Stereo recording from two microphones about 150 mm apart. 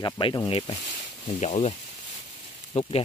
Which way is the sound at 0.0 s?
30° left (ahead or behind).